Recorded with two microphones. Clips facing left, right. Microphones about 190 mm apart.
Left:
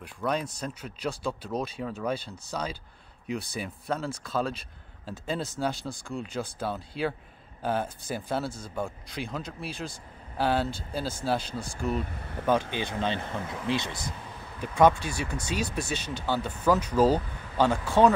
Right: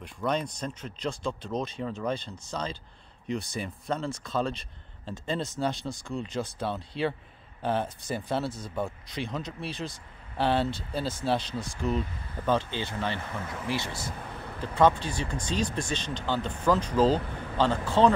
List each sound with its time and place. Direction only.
0.2 s speech: 5° left (ahead or behind)
12.7 s speech: 15° left (ahead or behind)